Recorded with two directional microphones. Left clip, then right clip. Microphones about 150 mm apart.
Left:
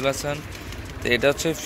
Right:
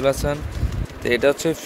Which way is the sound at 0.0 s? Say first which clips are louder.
Right 4 dB; 25° right (ahead or behind).